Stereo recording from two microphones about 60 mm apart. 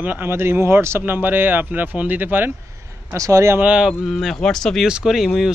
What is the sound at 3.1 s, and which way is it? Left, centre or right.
Speech, right.